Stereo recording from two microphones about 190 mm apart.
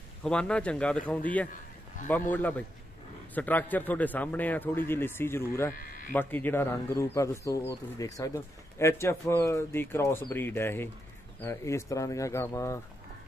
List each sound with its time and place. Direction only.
0.2 s a man's voice: 5° left (ahead or behind)